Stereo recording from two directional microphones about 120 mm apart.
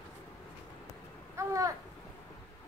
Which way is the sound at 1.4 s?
25° right (ahead or behind).